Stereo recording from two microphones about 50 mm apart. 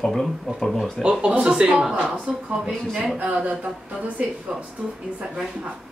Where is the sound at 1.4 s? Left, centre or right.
Centre.